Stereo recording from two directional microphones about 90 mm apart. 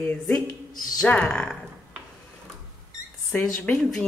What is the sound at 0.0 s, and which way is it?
Speech, 20° left (ahead or behind).